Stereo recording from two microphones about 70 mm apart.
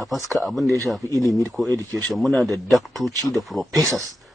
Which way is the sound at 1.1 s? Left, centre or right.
Right.